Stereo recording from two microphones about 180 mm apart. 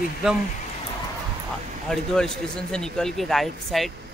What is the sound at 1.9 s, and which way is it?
Speech, 5° left (ahead or behind).